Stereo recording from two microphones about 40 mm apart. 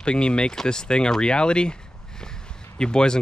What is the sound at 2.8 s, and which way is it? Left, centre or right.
Speech, left.